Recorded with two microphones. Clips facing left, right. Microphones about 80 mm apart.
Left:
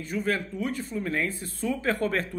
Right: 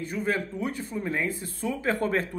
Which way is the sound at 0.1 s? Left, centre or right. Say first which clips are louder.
Left 1 dB; right.